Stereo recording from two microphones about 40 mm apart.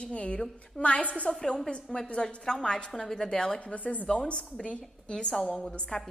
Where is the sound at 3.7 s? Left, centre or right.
Left; by 6.1 s centre.